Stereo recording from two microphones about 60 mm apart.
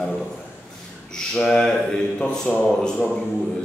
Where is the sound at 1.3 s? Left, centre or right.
Centre.